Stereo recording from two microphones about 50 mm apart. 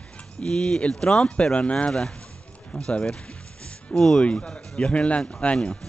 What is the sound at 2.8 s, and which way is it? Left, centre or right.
Music, centre.